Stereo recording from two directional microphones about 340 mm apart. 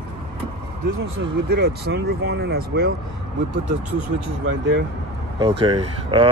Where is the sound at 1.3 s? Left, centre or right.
Right.